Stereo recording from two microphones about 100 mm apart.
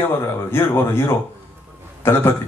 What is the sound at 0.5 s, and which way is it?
A man's voice, 25° left (ahead or behind).